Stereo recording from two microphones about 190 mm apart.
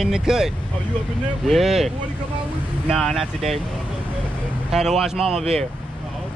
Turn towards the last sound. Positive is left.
turn(degrees=0)  # may be behind; listen again after turning